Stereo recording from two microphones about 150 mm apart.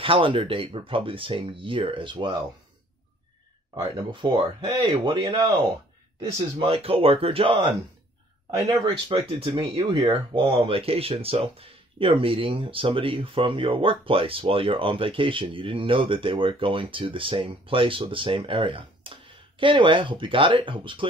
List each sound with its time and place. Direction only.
0.0 s speech: 35° right (ahead or behind)
3.7 s speech: 35° right (ahead or behind)
8.8 s speech: 35° right (ahead or behind)